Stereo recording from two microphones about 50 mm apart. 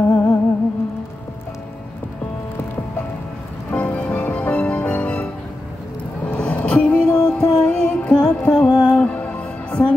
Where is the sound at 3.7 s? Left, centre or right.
Left.